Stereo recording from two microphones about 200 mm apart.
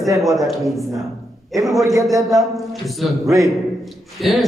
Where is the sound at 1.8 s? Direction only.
15° right (ahead or behind).